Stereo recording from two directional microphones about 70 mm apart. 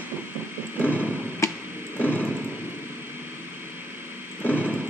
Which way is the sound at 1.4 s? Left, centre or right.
Left.